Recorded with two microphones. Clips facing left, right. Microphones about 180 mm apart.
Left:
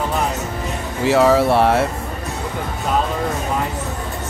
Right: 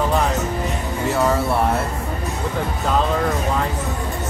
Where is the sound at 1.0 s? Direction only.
90° left.